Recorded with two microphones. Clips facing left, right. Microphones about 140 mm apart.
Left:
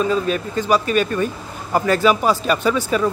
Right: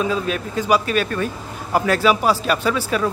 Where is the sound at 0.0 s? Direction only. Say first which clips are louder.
Left 2 dB; 5° right (ahead or behind).